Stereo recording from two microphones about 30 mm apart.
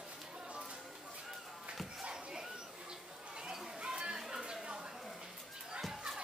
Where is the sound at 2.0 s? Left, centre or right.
Right.